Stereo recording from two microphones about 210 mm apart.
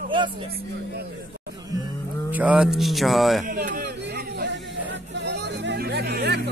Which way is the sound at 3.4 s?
40° right (ahead or behind).